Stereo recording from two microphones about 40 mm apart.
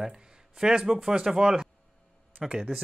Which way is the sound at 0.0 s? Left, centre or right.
Centre.